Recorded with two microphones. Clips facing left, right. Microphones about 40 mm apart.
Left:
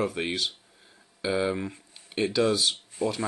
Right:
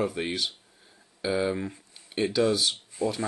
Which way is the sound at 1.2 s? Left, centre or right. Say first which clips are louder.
Even; centre.